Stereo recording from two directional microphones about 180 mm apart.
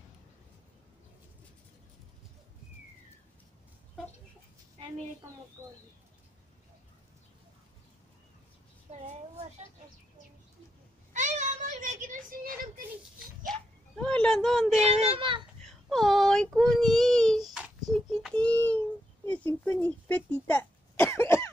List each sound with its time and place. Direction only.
5.6 s speech: 15° right (ahead or behind)
9.0 s a sound: 40° right (ahead or behind)
11.1 s child singing: 40° right (ahead or behind)
14.0 s speech: 5° left (ahead or behind)
14.8 s a child's voice: 35° right (ahead or behind)
15.6 s a sound: centre (ahead or behind)
19.2 s cough: 10° left (ahead or behind)